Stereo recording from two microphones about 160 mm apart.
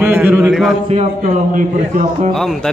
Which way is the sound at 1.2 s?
55° right (ahead or behind).